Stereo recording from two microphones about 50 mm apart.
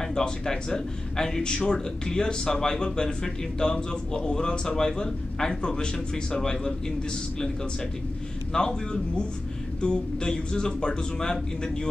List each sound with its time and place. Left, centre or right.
0.1 s a man's voice: centre
8.5 s a man's voice: centre